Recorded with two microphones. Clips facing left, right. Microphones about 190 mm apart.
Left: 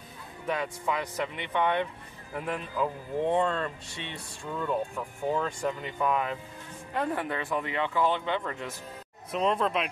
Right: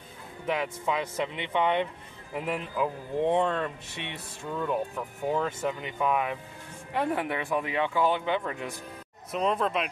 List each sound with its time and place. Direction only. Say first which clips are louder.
0.5 s speech: right 1 dB; 15° right (ahead or behind)
9.3 s speech: even; centre (ahead or behind)